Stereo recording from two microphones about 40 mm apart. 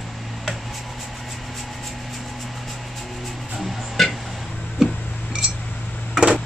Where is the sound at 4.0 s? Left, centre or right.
Centre.